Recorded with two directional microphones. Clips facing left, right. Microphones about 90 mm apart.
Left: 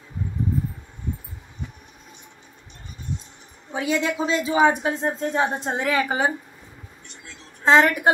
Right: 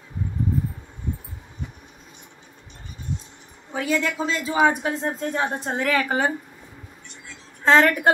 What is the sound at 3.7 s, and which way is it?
Speech, 20° left (ahead or behind).